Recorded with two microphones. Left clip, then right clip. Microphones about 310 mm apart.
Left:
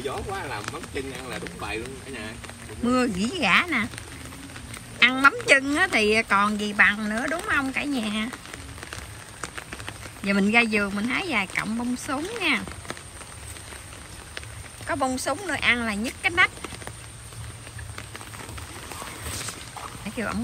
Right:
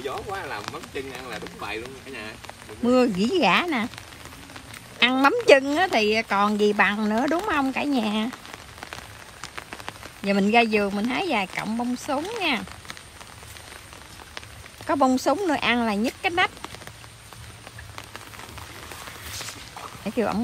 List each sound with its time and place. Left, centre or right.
0.0 s speech: centre
4.9 s speech: centre
7.0 s speech: right
7.4 s speech: centre
10.2 s speech: centre
14.9 s speech: centre